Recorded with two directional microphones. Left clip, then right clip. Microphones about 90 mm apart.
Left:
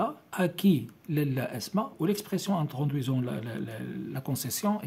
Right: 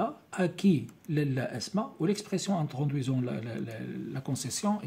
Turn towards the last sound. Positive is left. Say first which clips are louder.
# left 1 dB
turn(degrees=35)  # may be behind; listen again after turning